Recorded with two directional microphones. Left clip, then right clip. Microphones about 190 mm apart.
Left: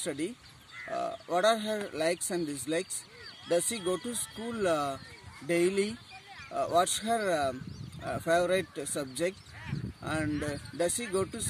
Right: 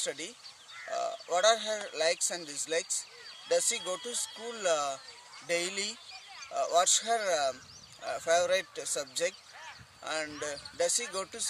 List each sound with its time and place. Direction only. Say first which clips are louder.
0.0 s speech: left 2 dB; 5° right (ahead or behind)